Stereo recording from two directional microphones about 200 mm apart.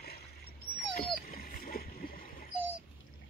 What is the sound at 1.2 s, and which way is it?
Splash, 45° left (ahead or behind).